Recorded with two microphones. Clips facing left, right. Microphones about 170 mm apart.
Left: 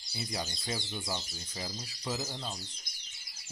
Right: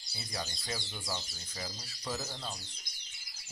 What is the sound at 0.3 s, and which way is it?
Speech, 20° left (ahead or behind).